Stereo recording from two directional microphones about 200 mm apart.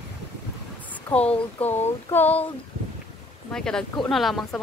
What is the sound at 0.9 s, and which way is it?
Speech, 5° left (ahead or behind).